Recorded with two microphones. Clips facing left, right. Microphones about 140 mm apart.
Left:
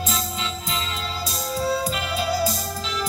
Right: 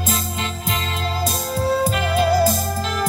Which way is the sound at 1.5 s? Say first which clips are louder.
Right 4 dB; 55° right (ahead or behind).